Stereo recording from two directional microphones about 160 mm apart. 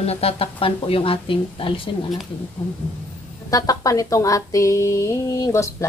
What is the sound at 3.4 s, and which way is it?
A woman's voice, 20° left (ahead or behind).